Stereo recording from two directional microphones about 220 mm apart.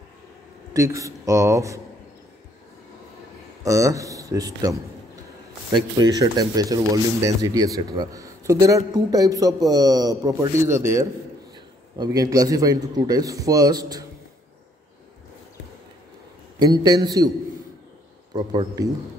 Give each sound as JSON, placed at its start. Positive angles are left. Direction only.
{"t": 0.7, "sound": "speech", "side_deg": -15}
{"t": 3.6, "sound": "speech", "side_deg": -15}
{"t": 16.5, "sound": "speech", "side_deg": -20}
{"t": 18.3, "sound": "speech", "side_deg": -20}